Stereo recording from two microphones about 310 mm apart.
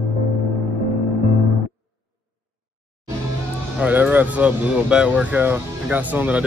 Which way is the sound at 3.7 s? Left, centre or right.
Centre.